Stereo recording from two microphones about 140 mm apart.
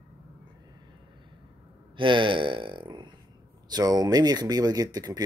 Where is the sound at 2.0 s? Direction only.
35° right (ahead or behind).